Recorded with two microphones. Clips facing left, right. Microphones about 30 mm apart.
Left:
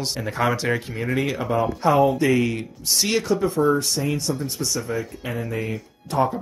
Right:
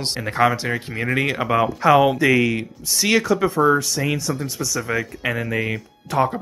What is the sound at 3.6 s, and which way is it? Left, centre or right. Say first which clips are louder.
Speech: right 4 dB; right.